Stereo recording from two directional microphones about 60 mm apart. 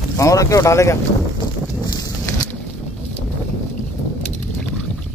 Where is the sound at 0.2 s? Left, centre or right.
Left.